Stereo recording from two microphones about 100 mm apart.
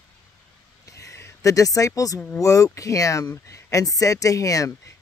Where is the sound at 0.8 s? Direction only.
30° left (ahead or behind).